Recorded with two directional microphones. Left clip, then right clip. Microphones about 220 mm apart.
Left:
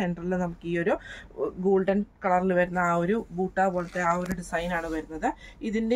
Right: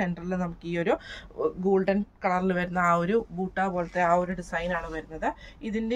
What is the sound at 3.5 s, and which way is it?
Speech, 20° right (ahead or behind).